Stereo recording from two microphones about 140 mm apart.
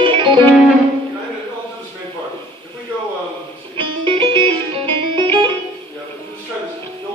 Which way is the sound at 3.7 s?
40° right (ahead or behind).